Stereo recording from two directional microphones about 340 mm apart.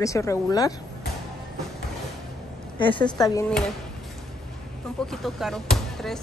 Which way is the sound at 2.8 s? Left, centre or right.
Centre.